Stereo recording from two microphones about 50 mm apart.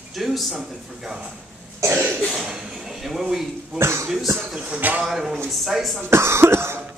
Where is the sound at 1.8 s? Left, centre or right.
Right.